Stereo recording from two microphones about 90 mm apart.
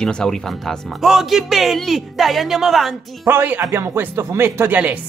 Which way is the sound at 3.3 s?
20° right (ahead or behind).